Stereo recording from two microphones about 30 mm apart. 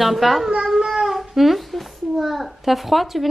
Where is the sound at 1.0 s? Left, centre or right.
Centre.